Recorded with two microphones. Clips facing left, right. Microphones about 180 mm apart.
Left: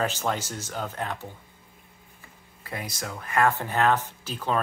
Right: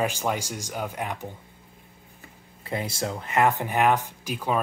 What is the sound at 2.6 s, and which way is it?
Speech, 25° right (ahead or behind).